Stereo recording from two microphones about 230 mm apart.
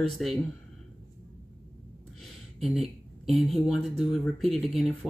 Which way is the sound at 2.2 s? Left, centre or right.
Centre.